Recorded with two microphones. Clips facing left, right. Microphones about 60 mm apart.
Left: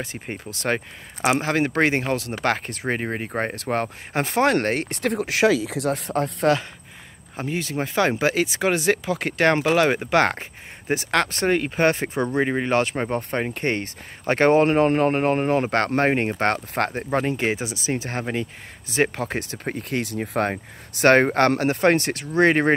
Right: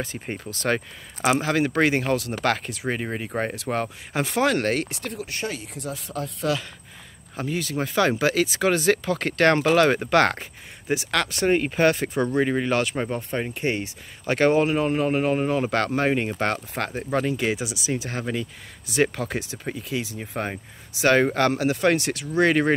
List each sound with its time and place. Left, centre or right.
0.0 s speech: left
4.8 s speech: left
7.3 s speech: left
10.9 s speech: left
13.1 s speech: left
14.2 s speech: left
17.1 s speech: left
19.5 s speech: left